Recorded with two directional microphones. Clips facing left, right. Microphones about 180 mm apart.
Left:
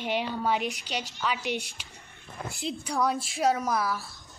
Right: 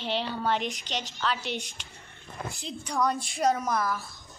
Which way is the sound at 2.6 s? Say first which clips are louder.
Left 1 dB; 5° left (ahead or behind).